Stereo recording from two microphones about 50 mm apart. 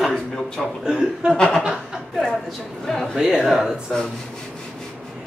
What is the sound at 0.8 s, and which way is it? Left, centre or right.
Speech, centre.